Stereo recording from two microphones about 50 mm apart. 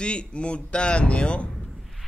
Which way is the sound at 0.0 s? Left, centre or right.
Left.